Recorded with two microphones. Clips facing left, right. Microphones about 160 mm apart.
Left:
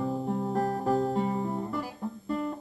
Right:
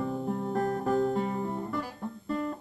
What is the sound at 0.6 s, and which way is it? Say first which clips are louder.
Music: right 1 dB; 30° left (ahead or behind).